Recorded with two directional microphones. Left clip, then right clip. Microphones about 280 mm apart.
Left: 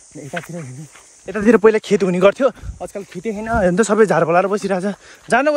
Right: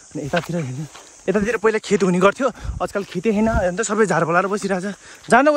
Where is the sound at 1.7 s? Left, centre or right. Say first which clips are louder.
Left 4 dB; centre.